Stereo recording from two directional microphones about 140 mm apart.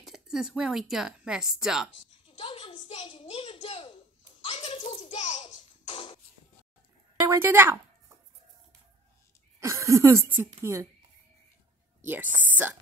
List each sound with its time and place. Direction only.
0.0 s speech: 5° right (ahead or behind)
2.2 s a child's voice: 40° left (ahead or behind)
4.5 s a sound: 40° left (ahead or behind)
7.2 s a woman's voice: 20° right (ahead or behind)
9.6 s speech: 20° right (ahead or behind)
12.0 s speech: 15° right (ahead or behind)